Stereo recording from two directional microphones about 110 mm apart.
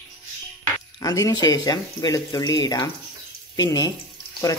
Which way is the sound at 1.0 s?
30° left (ahead or behind).